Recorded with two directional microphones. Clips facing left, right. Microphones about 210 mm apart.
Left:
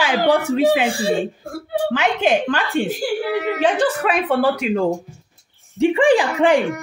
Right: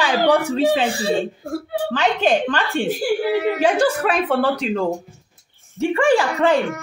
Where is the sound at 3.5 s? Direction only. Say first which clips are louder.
Right 1 dB; 5° right (ahead or behind).